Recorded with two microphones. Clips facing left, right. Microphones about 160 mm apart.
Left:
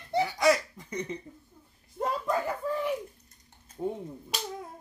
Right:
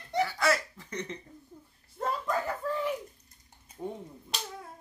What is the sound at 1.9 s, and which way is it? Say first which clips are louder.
Speech: left 2 dB; 15° left (ahead or behind).